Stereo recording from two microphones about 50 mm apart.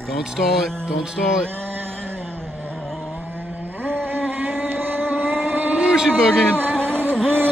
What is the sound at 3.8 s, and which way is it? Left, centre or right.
Vehicle, right.